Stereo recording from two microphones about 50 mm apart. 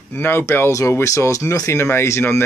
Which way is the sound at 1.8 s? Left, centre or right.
Left.